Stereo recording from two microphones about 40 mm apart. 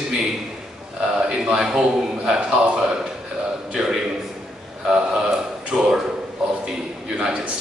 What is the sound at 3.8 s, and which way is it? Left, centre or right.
Speech, centre.